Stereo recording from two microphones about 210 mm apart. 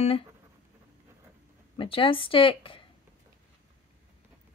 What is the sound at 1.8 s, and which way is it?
Speech, 25° left (ahead or behind).